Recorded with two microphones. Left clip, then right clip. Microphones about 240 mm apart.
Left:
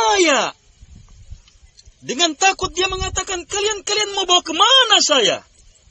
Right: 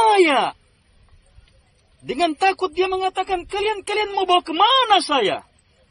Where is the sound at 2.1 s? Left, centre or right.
Left.